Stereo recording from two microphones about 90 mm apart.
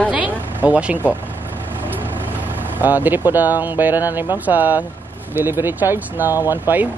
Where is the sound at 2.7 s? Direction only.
20° right (ahead or behind).